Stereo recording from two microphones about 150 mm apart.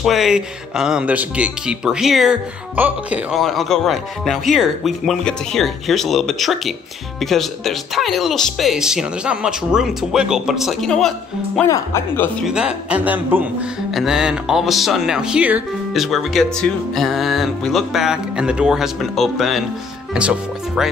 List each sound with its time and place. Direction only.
0.0 s music: centre (ahead or behind)
11.6 s speech: 20° left (ahead or behind)
12.4 s music: 5° right (ahead or behind)